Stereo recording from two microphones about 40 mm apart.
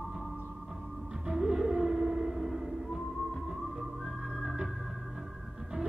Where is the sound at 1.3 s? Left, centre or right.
Centre.